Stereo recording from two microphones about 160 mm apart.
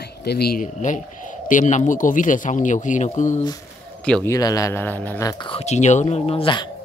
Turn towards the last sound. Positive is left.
turn(degrees=30)  # may be behind; listen again after turning